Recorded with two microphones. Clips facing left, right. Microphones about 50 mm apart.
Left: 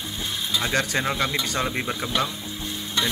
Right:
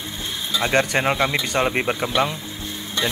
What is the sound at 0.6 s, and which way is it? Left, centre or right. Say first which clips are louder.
Speech: right 6 dB; right.